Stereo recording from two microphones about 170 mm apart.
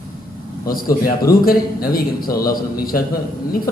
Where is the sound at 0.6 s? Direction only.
60° left (ahead or behind).